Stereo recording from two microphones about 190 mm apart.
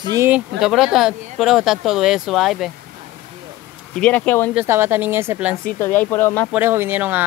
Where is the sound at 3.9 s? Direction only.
5° left (ahead or behind).